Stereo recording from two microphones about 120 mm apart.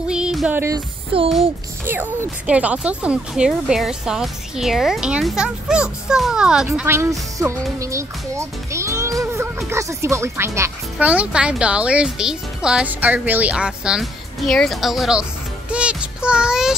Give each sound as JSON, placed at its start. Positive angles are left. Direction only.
{"t": 0.1, "sound": "music", "side_deg": -5}
{"t": 0.5, "sound": "speech", "side_deg": -20}
{"t": 0.7, "sound": "music", "side_deg": -50}
{"t": 1.9, "sound": "speech", "side_deg": -15}
{"t": 6.9, "sound": "speech", "side_deg": -25}
{"t": 11.0, "sound": "speech", "side_deg": -10}
{"t": 15.7, "sound": "music", "side_deg": -10}